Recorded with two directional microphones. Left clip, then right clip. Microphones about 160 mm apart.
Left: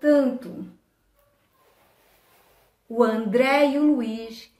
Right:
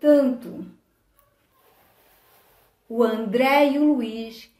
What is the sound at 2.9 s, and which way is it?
Speech, 20° right (ahead or behind).